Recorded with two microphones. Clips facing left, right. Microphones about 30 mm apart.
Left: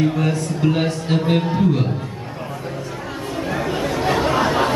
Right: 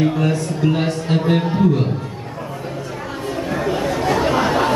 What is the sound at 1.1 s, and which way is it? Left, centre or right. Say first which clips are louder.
Speech: right 1 dB; centre.